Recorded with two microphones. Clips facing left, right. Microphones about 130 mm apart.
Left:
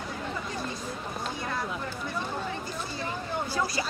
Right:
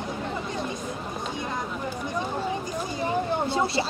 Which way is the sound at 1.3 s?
20° right (ahead or behind).